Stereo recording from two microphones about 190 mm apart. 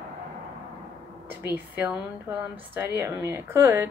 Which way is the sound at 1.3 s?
10° right (ahead or behind).